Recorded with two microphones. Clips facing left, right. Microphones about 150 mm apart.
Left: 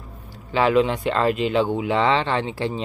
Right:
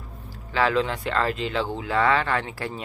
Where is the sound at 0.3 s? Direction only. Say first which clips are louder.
Left 4 dB; 20° left (ahead or behind).